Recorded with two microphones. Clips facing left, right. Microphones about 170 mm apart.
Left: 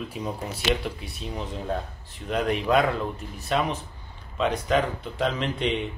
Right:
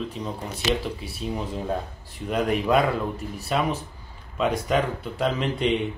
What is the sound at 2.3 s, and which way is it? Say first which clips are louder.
A man's voice: right 1 dB; 5° right (ahead or behind).